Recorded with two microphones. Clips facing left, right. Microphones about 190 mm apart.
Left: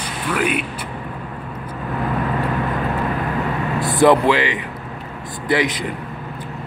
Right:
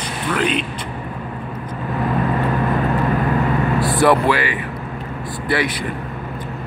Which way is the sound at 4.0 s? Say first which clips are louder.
Left 3 dB; 20° left (ahead or behind).